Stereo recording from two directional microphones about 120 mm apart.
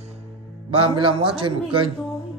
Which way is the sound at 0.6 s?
45° right (ahead or behind).